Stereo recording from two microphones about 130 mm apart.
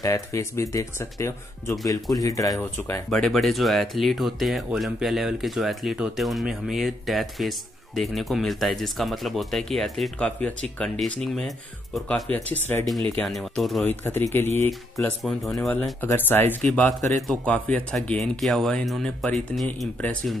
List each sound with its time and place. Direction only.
0.0 s speech: 25° left (ahead or behind)
3.1 s speech: 5° left (ahead or behind)
12.3 s speech: 15° left (ahead or behind)
13.1 s speech: centre (ahead or behind)
13.8 s speech: 15° left (ahead or behind)
14.7 s speech: centre (ahead or behind)
16.0 s speech: 15° left (ahead or behind)
16.6 s speech: 5° left (ahead or behind)